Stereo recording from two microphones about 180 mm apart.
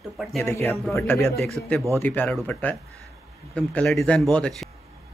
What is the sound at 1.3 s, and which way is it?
A woman's voice, centre (ahead or behind).